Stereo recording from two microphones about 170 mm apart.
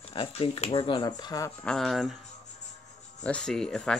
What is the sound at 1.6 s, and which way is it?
Speech, 5° left (ahead or behind).